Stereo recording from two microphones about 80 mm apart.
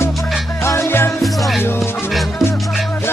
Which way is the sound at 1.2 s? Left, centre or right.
Centre.